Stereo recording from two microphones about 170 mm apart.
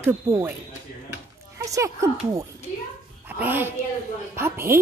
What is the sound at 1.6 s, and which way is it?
A child's voice, 20° right (ahead or behind).